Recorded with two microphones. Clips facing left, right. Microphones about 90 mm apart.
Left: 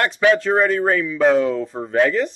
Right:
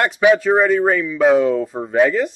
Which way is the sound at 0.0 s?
10° right (ahead or behind).